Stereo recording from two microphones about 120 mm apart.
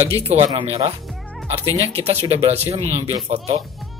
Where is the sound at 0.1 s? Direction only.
60° right (ahead or behind).